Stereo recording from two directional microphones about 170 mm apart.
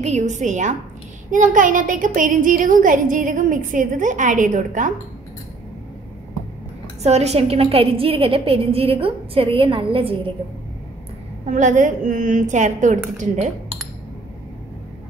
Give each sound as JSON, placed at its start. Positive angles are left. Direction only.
{"t": 0.0, "sound": "a woman's voice", "side_deg": -45}
{"t": 7.0, "sound": "a woman's voice", "side_deg": -40}
{"t": 11.4, "sound": "a woman's voice", "side_deg": -45}